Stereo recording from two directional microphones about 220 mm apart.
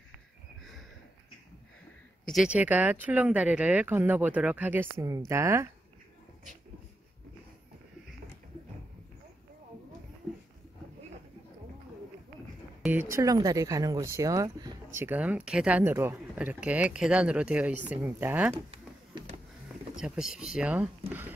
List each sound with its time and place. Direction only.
2.2 s speech: centre (ahead or behind)
12.8 s speech: 10° right (ahead or behind)
18.7 s a sound: 25° right (ahead or behind)
20.0 s speech: 5° right (ahead or behind)